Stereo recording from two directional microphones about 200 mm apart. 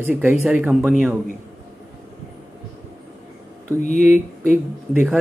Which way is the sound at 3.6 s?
35° left (ahead or behind).